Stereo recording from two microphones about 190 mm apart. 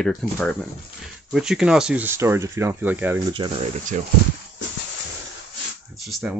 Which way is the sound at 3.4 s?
25° right (ahead or behind).